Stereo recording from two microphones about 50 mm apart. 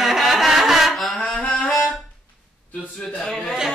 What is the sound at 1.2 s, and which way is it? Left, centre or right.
Saxophone, left.